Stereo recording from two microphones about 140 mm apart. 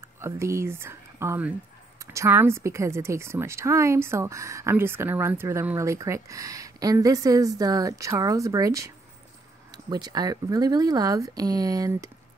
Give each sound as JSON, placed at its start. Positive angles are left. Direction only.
{"t": 0.0, "sound": "speech", "side_deg": -20}